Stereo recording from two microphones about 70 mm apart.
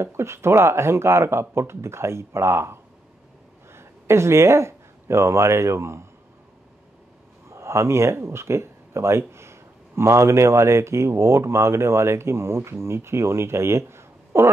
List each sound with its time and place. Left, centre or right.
0.0 s speech: right
7.4 s speech: right